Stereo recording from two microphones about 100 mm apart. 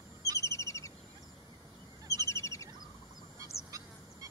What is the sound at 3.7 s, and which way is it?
Goose, 35° right (ahead or behind).